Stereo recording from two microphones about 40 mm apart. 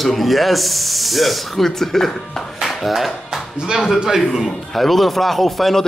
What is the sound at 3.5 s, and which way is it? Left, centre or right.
Speech, right.